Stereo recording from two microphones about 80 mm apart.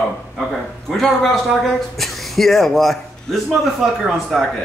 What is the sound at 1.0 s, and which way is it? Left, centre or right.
A man's voice, centre.